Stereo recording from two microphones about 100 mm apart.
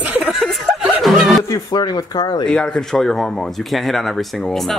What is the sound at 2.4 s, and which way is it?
A man's voice, 10° left (ahead or behind).